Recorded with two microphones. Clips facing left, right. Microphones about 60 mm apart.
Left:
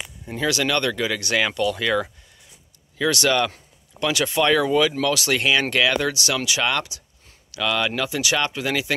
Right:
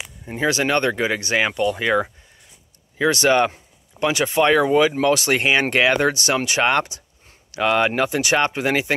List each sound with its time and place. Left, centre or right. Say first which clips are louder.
0.2 s speech: right 2 dB; right